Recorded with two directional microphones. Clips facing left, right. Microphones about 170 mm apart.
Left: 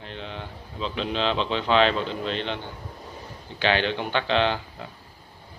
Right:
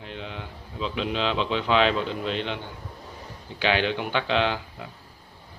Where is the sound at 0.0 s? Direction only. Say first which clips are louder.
Even; 10° right (ahead or behind).